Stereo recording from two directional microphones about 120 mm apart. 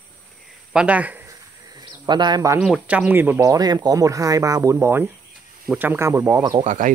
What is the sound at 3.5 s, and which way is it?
Speech, 35° right (ahead or behind).